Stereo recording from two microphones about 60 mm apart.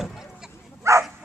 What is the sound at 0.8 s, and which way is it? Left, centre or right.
Bow-wow, right.